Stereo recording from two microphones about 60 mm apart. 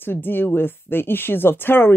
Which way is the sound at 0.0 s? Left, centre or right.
Left.